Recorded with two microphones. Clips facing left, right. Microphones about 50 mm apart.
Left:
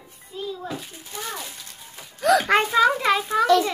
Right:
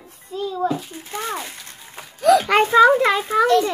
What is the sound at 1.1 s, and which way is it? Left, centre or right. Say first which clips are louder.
Music: right 6 dB; right.